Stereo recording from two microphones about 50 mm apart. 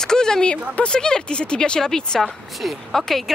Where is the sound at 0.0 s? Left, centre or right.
Centre.